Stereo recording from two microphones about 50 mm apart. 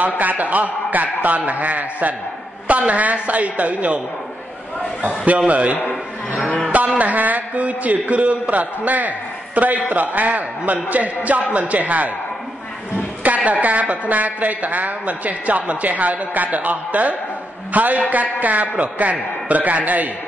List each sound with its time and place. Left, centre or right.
0.0 s a woman's voice: right
5.5 s a woman's voice: right
13.2 s a woman's voice: right